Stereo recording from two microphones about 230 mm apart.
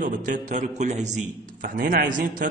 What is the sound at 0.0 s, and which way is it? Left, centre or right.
A man's voice, right.